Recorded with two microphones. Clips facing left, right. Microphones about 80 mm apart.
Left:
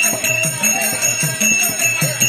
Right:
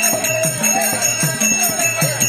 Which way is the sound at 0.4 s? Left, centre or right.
Right.